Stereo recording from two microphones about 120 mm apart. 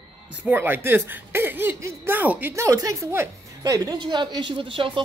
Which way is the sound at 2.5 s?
25° right (ahead or behind).